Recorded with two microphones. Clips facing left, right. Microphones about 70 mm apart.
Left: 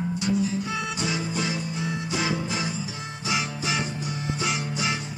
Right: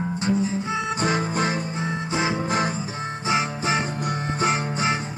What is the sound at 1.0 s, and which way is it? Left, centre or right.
Music, right.